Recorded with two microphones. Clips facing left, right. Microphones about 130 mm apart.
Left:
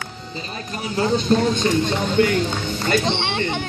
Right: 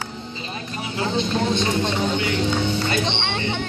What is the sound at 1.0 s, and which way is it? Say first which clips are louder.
Speech: left 5 dB; 40° left (ahead or behind).